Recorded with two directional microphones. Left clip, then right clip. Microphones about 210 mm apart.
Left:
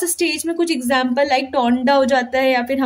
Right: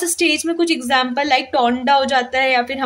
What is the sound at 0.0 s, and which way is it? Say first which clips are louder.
A woman's voice: right 3 dB; 5° left (ahead or behind).